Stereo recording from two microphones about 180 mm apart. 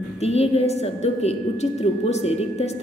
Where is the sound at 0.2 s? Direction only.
35° left (ahead or behind).